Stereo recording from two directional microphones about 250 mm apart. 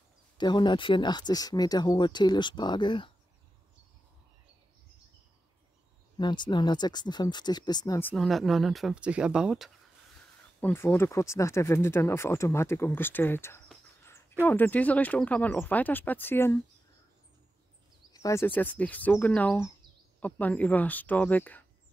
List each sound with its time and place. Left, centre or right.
0.4 s speech: centre
6.1 s speech: centre
10.6 s speech: centre
18.1 s speech: centre